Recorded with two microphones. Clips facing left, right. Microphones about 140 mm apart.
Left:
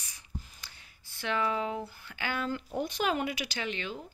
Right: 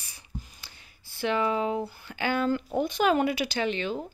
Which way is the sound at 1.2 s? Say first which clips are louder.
Right 5 dB; 20° right (ahead or behind).